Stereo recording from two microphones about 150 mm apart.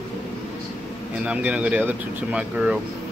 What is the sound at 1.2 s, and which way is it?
Speech, 10° right (ahead or behind).